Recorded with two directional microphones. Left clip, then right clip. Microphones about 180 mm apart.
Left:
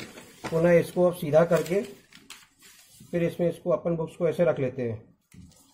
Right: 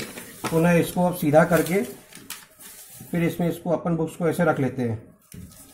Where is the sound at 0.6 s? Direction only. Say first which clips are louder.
Even; 35° left (ahead or behind).